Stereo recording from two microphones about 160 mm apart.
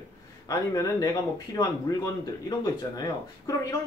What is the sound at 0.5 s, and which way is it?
Speech, 20° left (ahead or behind).